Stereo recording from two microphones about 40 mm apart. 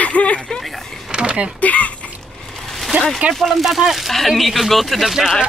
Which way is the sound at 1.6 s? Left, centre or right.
Left.